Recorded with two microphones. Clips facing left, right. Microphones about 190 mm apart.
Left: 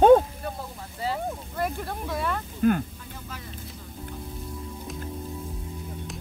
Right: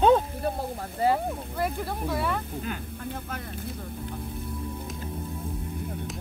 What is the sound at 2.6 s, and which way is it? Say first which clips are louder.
Speech: left 13 dB; 50° left (ahead or behind).